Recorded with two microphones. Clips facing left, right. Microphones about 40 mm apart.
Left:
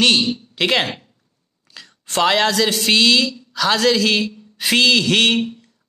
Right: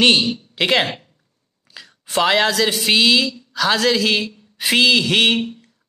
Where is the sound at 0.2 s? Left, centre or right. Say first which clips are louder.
Even; centre.